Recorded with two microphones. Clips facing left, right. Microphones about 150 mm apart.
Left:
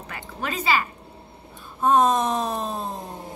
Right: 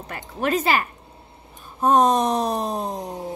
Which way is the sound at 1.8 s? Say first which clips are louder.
Right 2 dB; 40° right (ahead or behind).